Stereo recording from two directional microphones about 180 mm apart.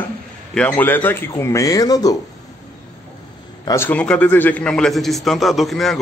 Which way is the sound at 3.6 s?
15° left (ahead or behind).